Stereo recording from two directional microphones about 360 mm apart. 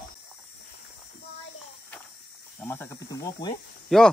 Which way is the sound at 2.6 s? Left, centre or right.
Centre.